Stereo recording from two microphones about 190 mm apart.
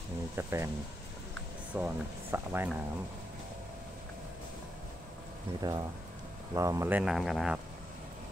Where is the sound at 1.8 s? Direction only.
10° right (ahead or behind).